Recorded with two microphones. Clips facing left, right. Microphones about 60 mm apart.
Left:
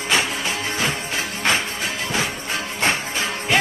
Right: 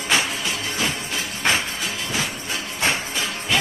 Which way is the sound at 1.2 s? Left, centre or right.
Left.